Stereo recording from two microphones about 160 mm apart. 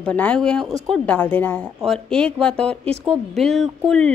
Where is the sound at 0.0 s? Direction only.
10° left (ahead or behind).